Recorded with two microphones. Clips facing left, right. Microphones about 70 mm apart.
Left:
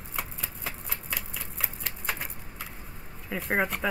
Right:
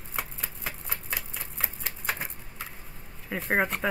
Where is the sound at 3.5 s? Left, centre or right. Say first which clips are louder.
Right 1 dB; centre.